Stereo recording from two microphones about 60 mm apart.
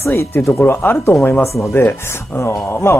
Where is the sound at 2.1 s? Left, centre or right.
Left.